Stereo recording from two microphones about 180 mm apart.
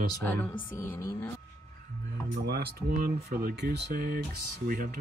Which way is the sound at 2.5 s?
55° right (ahead or behind).